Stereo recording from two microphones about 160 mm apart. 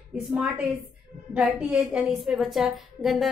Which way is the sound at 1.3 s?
5° right (ahead or behind).